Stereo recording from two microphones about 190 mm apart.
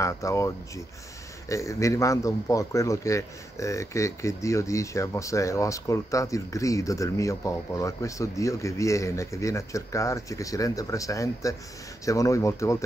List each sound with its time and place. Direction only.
0.0 s a man's voice: 15° left (ahead or behind)